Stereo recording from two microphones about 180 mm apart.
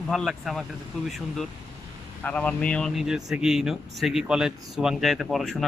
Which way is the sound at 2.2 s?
10° left (ahead or behind).